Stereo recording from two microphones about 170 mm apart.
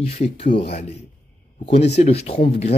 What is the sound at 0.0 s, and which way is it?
Speech, 40° left (ahead or behind).